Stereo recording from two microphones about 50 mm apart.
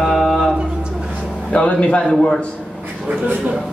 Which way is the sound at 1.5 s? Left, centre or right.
Left.